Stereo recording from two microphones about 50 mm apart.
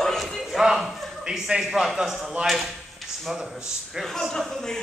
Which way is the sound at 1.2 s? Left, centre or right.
Centre.